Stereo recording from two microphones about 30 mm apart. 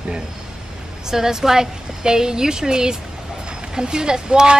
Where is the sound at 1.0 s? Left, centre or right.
Centre.